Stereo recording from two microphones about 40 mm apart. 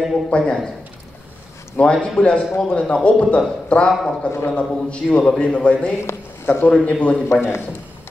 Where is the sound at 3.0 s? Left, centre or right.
Left.